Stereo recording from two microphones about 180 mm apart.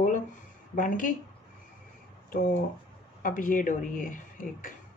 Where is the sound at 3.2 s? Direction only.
50° left (ahead or behind).